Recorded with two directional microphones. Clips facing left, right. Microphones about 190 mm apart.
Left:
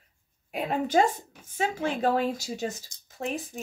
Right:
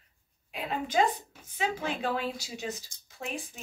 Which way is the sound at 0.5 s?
50° left (ahead or behind).